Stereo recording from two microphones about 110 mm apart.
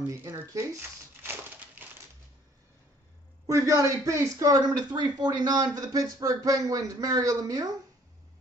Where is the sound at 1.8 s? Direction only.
15° right (ahead or behind).